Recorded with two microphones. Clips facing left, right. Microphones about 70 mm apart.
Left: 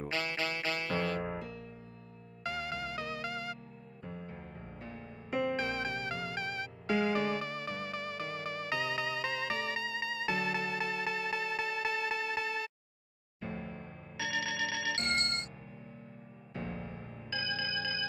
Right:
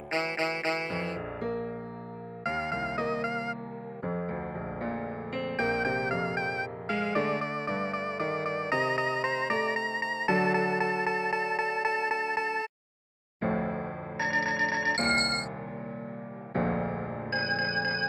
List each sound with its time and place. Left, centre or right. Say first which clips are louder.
0.1 s music: right 8 dB; right
1.4 s music: right 12 dB; right
2.4 s music: right 6 dB; right
4.0 s music: right 12 dB; right
5.3 s music: left 4 dB; centre
5.6 s music: right 7 dB; right
13.4 s music: right 12 dB; right
14.1 s music: right 7 dB; right
16.5 s music: right 12 dB; right
17.3 s music: right 6 dB; right